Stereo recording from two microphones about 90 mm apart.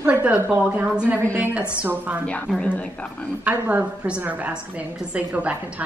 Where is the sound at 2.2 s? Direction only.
15° left (ahead or behind).